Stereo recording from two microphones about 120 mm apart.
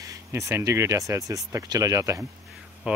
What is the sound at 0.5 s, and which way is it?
Speech, 25° right (ahead or behind).